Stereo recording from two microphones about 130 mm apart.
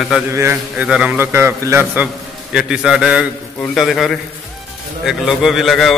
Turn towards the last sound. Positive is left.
turn(degrees=0)  # may be behind; listen again after turning